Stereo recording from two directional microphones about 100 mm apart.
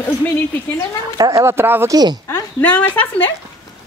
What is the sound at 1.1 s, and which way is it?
Speech, 40° right (ahead or behind).